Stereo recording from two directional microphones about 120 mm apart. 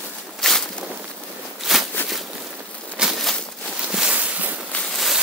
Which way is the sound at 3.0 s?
Centre (ahead or behind).